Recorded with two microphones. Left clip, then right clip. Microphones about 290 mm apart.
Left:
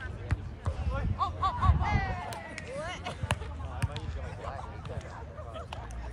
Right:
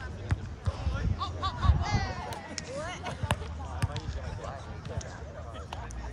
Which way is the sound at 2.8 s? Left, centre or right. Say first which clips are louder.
Even; centre.